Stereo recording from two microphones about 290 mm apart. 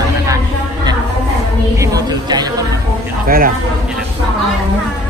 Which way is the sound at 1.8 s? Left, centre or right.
Centre.